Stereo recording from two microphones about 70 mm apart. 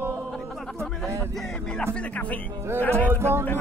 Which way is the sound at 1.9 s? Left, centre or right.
Centre.